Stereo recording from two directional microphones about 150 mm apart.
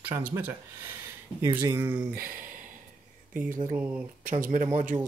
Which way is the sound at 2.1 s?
70° right (ahead or behind).